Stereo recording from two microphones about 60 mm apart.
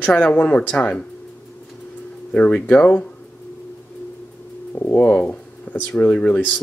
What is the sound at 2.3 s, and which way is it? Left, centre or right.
Speech, left.